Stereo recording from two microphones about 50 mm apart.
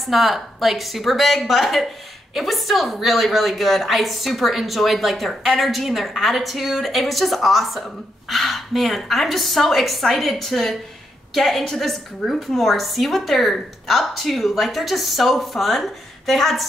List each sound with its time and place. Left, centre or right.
0.0 s a woman's voice: centre